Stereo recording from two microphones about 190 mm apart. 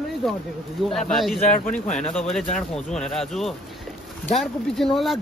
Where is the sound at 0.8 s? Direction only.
Centre (ahead or behind).